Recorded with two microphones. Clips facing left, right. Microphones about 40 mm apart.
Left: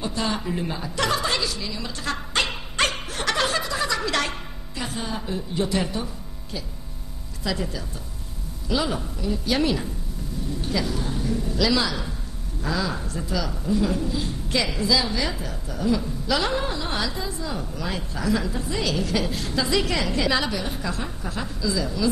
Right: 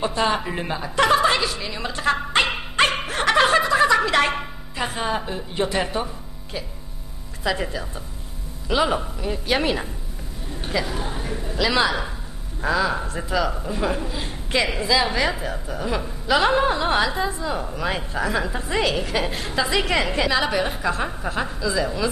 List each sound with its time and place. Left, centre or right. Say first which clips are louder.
0.0 s a man's voice: right 5 dB; right
3.0 s snicker: right 6 dB; right
3.3 s chuckle: right 7 dB; right
4.3 s a woman's voice: right 7 dB; right
7.4 s a man's voice: right 4 dB; right